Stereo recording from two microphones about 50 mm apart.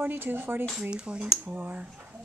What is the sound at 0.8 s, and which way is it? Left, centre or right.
Speech, centre.